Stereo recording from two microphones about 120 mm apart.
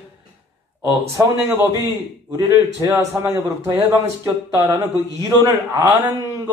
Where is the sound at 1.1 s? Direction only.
25° right (ahead or behind).